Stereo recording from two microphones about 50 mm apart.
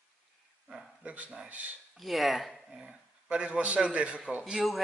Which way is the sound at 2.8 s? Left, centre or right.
Right.